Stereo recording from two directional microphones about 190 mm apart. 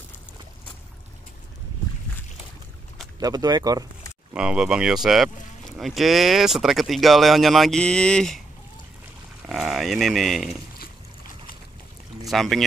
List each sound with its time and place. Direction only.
3.2 s speech: 20° right (ahead or behind)
4.3 s speech: 5° right (ahead or behind)
9.5 s speech: centre (ahead or behind)
12.3 s speech: centre (ahead or behind)